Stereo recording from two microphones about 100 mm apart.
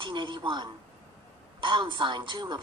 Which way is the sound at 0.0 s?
55° right (ahead or behind).